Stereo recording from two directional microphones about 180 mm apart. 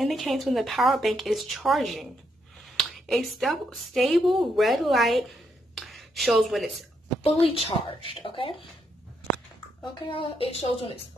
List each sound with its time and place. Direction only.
0.0 s speech: centre (ahead or behind)
5.8 s a sound: centre (ahead or behind)
7.4 s a woman's voice: 30° left (ahead or behind)
10.0 s a woman's voice: 30° left (ahead or behind)